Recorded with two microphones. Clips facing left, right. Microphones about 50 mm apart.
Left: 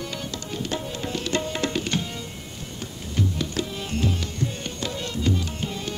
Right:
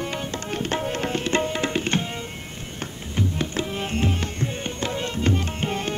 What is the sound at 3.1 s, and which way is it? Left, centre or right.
Tabla, right.